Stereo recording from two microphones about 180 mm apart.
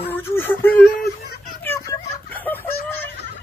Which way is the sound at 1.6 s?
15° left (ahead or behind).